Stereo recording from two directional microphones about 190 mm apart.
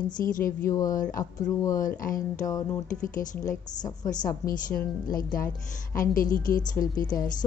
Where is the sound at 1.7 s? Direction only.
45° left (ahead or behind).